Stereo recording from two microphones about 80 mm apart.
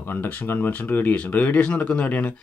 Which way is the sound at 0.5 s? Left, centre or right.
Left.